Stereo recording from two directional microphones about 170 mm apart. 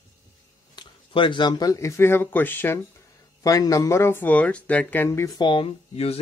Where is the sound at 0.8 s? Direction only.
30° left (ahead or behind).